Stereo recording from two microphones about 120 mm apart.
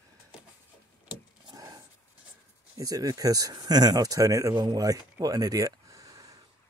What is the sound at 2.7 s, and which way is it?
Speech, 30° right (ahead or behind).